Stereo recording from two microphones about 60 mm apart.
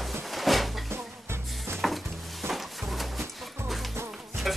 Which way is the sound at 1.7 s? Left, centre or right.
Centre.